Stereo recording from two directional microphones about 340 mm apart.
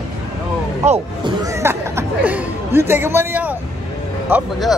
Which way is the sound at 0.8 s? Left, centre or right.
Centre.